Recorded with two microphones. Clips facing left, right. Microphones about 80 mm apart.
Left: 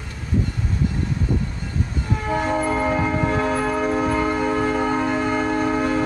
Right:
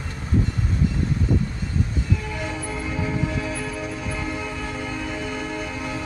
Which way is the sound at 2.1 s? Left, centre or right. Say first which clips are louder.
Left 8 dB; left.